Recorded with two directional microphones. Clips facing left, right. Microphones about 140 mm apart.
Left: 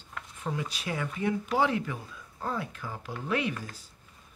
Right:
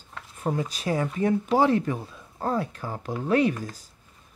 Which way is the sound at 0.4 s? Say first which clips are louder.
Right 7 dB; 40° right (ahead or behind).